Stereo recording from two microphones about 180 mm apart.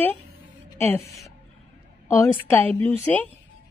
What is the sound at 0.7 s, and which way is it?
Speech, 10° left (ahead or behind).